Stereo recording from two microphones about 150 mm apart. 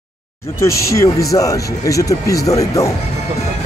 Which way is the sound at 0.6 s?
20° left (ahead or behind).